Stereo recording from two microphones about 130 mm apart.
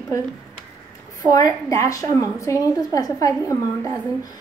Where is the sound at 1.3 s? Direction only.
25° left (ahead or behind).